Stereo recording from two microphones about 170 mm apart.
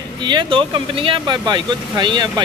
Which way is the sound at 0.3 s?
30° right (ahead or behind).